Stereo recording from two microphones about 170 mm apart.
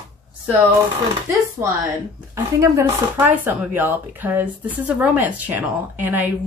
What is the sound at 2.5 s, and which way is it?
A woman's voice, 15° right (ahead or behind).